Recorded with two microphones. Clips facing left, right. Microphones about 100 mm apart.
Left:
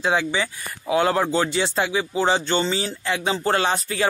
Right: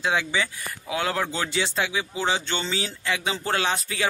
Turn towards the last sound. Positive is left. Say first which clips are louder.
# left 4 dB
turn(degrees=5)  # may be behind; listen again after turning